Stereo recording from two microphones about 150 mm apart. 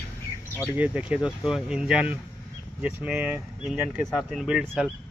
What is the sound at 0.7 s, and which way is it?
Speech, 10° right (ahead or behind).